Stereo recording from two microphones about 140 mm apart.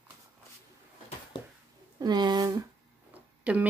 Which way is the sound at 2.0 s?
30° right (ahead or behind).